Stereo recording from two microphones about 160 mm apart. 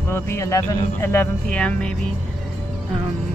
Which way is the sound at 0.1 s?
15° left (ahead or behind).